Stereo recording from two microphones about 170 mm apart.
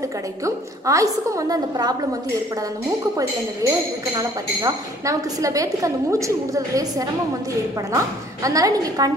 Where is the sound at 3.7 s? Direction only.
20° right (ahead or behind).